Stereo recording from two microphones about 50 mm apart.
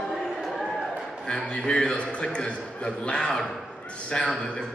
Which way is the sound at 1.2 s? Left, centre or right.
Centre.